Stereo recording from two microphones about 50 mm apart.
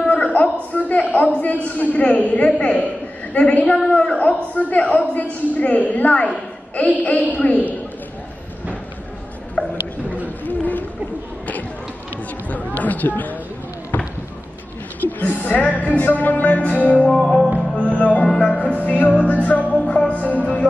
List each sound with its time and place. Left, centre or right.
0.0 s a sound: left
0.7 s a man's voice: left
9.6 s a sound: left
10.2 s a sound: left
12.4 s speech: left
15.0 s a woman's voice: left
17.2 s music: centre
17.9 s music: left
18.2 s music: centre
18.5 s music: left
19.1 s a man's voice: left
19.7 s music: left
20.0 s a man's voice: left